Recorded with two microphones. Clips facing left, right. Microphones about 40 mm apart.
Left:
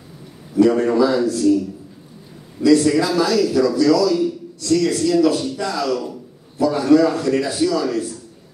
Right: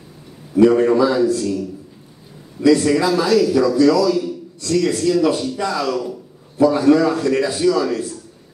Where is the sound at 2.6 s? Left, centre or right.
Centre.